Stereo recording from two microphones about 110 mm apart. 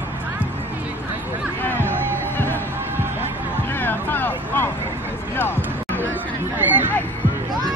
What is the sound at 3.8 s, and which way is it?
Vehicle, 15° left (ahead or behind).